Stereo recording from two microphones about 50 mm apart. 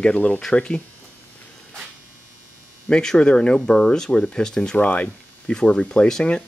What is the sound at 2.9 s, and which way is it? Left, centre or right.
Speech, centre.